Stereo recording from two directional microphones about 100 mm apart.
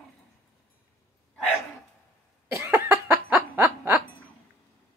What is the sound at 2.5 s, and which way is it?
Cough, 25° right (ahead or behind).